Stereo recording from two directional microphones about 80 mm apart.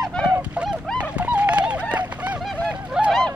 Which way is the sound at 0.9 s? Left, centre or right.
Centre.